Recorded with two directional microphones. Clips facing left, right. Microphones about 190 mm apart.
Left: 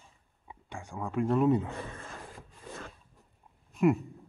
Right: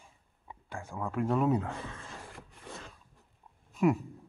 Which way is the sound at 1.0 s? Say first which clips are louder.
Left 3 dB; centre (ahead or behind).